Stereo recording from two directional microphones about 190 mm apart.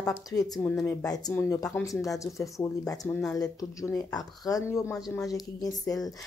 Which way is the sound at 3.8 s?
20° left (ahead or behind).